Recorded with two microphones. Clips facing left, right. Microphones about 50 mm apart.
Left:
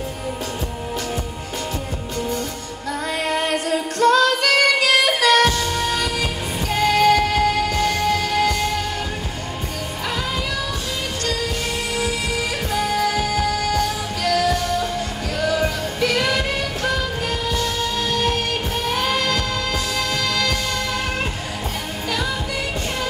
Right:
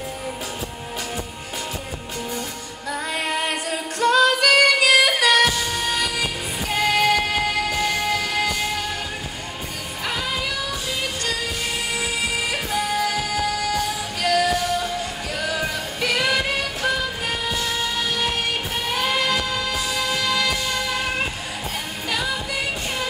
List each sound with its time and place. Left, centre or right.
3.2 s female singing: centre
6.7 s music: centre
12.0 s music: centre
18.1 s music: centre